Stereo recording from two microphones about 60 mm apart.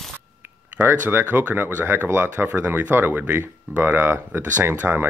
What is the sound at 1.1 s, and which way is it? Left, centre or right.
Speech, right.